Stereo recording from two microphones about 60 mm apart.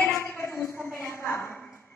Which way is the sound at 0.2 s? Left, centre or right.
Left.